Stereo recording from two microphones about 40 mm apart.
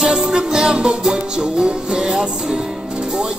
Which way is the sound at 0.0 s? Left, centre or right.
Centre.